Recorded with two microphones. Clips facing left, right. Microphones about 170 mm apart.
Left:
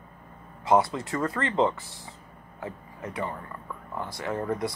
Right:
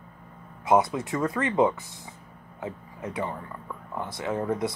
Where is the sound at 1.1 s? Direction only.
Centre (ahead or behind).